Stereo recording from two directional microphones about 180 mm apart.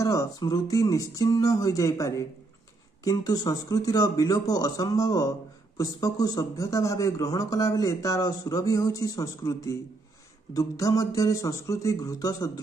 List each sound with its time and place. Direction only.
0.0 s a man's voice: 20° left (ahead or behind)